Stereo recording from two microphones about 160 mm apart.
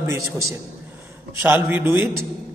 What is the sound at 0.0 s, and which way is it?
A man's voice, 20° right (ahead or behind).